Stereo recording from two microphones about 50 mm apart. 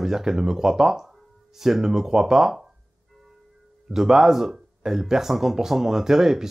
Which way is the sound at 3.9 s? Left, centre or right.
Centre.